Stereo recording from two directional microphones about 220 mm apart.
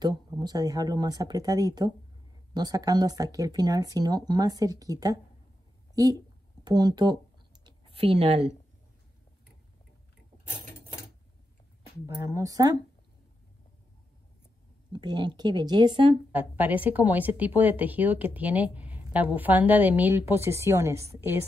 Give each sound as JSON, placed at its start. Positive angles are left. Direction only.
{"t": 0.0, "sound": "speech", "side_deg": -20}
{"t": 7.6, "sound": "a sound", "side_deg": -25}
{"t": 12.1, "sound": "speech", "side_deg": -15}
{"t": 14.9, "sound": "speech", "side_deg": -20}
{"t": 16.3, "sound": "speech", "side_deg": -10}